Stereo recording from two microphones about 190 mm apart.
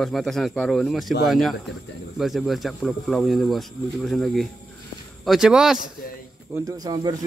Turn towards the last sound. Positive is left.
turn(degrees=-20)  # may be behind; listen again after turning